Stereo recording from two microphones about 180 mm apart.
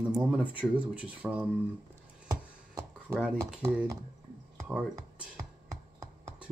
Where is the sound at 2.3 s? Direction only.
20° right (ahead or behind).